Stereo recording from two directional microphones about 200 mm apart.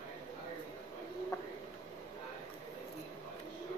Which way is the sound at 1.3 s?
15° left (ahead or behind).